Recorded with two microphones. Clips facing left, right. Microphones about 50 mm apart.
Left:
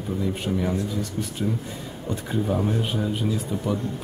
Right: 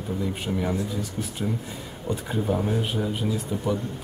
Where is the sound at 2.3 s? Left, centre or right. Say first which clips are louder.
Left 1 dB; centre.